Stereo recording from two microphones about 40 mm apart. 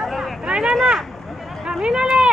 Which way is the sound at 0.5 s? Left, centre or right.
Centre.